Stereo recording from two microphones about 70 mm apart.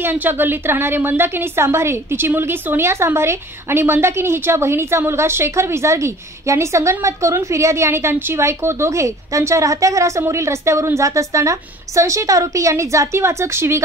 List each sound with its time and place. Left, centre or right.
0.0 s a woman's voice: right